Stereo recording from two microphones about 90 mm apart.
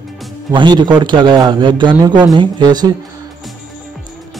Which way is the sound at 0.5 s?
60° right (ahead or behind).